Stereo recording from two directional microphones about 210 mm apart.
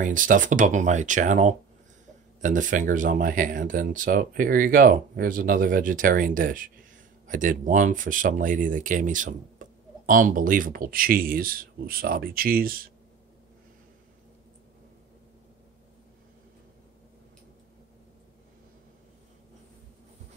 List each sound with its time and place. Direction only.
0.0 s speech: 40° right (ahead or behind)